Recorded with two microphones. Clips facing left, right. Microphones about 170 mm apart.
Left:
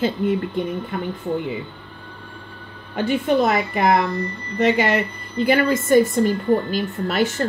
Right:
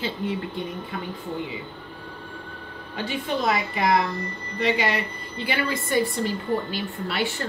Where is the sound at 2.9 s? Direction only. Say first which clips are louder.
Left 9 dB; 50° left (ahead or behind).